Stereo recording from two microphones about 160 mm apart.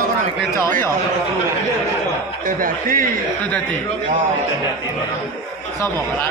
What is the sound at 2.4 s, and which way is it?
Speech, 60° right (ahead or behind).